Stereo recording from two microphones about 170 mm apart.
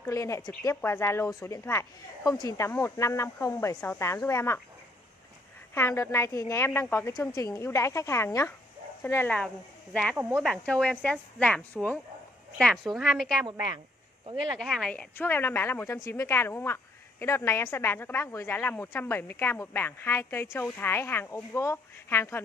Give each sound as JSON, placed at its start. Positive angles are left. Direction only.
{"t": 0.0, "sound": "a woman's voice", "side_deg": 15}
{"t": 5.8, "sound": "a woman's voice", "side_deg": 15}